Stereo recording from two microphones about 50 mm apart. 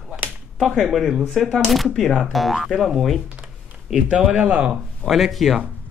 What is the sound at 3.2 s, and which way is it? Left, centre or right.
Computer keyboard, right.